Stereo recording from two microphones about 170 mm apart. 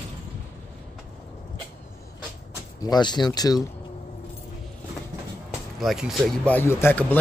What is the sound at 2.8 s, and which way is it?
Speech, 25° left (ahead or behind).